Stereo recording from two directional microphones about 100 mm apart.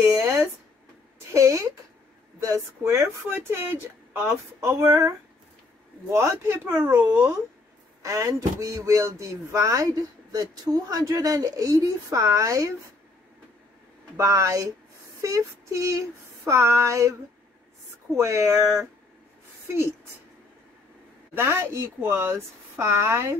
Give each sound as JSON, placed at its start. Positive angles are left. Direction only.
{"t": 0.0, "sound": "speech", "side_deg": -30}
{"t": 8.0, "sound": "speech", "side_deg": -30}
{"t": 14.1, "sound": "speech", "side_deg": -30}
{"t": 18.1, "sound": "speech", "side_deg": -30}
{"t": 21.4, "sound": "speech", "side_deg": -25}